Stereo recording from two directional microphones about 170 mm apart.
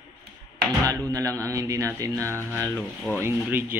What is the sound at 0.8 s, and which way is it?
Speech, 20° right (ahead or behind).